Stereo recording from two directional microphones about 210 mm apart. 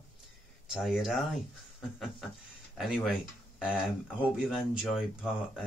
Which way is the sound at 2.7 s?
Centre (ahead or behind).